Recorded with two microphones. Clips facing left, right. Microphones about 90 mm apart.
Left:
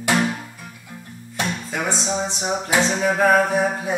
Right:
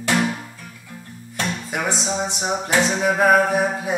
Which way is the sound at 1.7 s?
10° right (ahead or behind).